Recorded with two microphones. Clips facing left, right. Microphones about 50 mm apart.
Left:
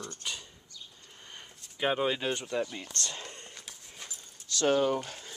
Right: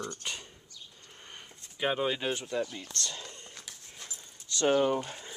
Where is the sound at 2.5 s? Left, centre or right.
Centre.